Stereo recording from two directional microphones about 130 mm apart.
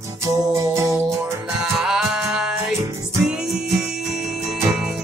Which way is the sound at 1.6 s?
5° right (ahead or behind).